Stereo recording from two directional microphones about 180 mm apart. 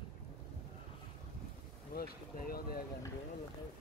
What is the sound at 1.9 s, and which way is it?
Speech, 55° left (ahead or behind).